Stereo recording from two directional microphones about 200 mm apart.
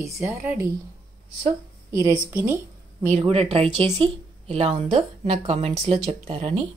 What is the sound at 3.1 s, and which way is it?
A woman's voice, 30° right (ahead or behind).